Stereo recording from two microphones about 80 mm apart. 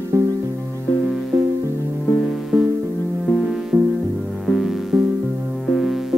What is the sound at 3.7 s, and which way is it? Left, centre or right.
Music, right.